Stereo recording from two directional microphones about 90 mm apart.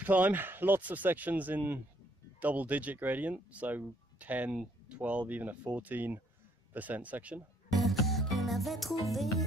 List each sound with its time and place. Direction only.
0.0 s speech: 20° right (ahead or behind)
7.7 s music: centre (ahead or behind)